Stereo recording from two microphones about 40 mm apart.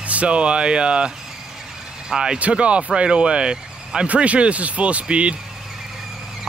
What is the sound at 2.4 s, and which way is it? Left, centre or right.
Speech, right.